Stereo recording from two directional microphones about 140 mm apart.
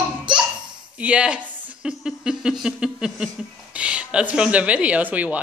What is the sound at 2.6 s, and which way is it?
Speech, 5° right (ahead or behind).